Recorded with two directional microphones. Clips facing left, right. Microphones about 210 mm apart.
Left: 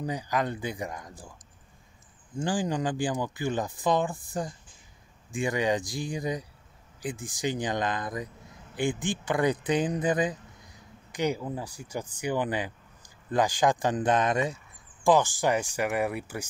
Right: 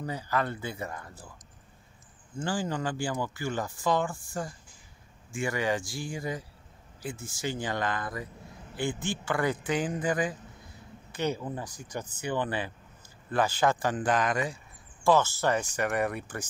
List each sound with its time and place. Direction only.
0.0 s speech: 15° left (ahead or behind)
2.3 s speech: 15° left (ahead or behind)